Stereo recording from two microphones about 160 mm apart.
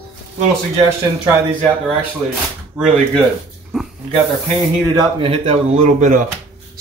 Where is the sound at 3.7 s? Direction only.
Centre (ahead or behind).